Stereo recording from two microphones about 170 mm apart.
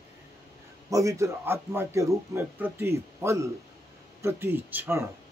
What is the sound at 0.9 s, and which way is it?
Speech, 20° right (ahead or behind).